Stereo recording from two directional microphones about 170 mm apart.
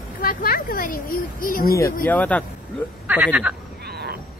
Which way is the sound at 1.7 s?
20° left (ahead or behind).